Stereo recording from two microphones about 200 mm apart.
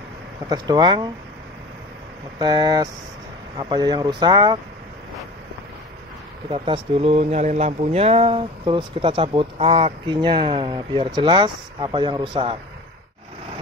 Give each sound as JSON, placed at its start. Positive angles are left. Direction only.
{"t": 0.5, "sound": "speech", "side_deg": -20}
{"t": 2.3, "sound": "speech", "side_deg": -20}
{"t": 6.5, "sound": "speech", "side_deg": -25}